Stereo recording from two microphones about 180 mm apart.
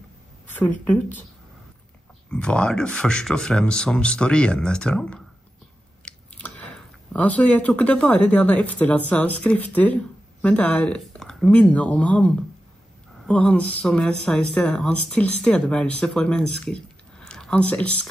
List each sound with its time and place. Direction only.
0.5 s a woman's voice: 10° left (ahead or behind)
2.2 s speech: 5° left (ahead or behind)
13.3 s speech: 5° left (ahead or behind)